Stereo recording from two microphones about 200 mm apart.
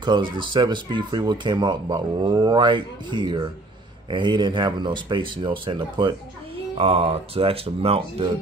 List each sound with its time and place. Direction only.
0.0 s speech: 25° right (ahead or behind)